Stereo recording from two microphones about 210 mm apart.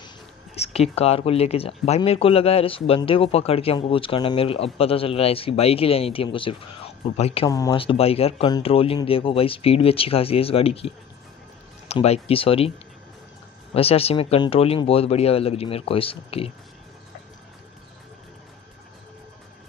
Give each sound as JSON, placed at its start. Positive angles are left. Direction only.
{"t": 0.6, "sound": "speech", "side_deg": 30}
{"t": 13.7, "sound": "speech", "side_deg": 30}